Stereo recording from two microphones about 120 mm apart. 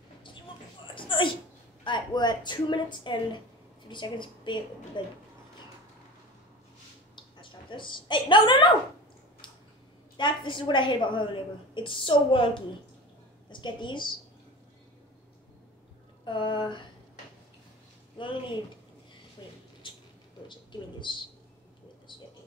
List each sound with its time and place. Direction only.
0.9 s a sound: 45° left (ahead or behind)
1.9 s a woman's voice: 40° left (ahead or behind)
7.3 s a woman's voice: 45° left (ahead or behind)
10.1 s a woman's voice: 40° left (ahead or behind)
16.3 s a woman's voice: 45° left (ahead or behind)
19.4 s mouse: 35° left (ahead or behind)
19.8 s a sound: 40° left (ahead or behind)
20.4 s speech: 40° left (ahead or behind)